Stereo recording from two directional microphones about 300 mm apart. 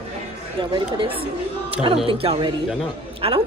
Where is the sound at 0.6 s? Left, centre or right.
Centre.